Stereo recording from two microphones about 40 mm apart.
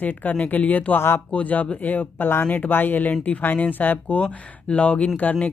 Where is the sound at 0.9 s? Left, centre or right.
Left.